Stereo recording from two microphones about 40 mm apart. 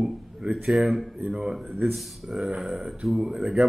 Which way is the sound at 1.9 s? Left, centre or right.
Centre.